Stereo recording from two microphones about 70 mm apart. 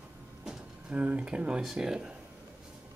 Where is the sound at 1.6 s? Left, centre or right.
Centre.